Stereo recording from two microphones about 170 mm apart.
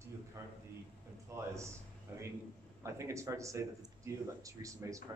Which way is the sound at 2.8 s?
15° right (ahead or behind).